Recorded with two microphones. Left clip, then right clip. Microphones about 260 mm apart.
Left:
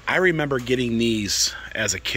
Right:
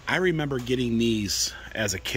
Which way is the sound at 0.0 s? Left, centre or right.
Centre.